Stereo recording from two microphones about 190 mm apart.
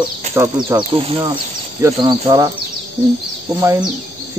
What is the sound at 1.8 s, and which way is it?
Speech, 15° right (ahead or behind).